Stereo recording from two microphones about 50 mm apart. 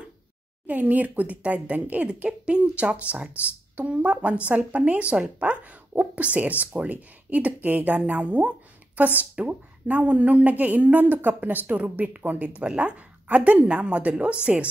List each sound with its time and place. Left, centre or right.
0.7 s speech: right
2.0 s speech: right